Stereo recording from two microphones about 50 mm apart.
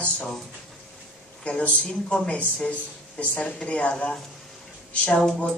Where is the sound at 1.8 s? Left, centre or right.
Left.